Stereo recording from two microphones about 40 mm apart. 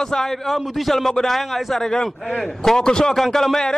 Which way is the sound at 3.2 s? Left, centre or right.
Centre.